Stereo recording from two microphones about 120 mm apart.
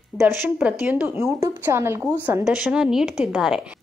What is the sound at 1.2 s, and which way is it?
Speech, 25° right (ahead or behind).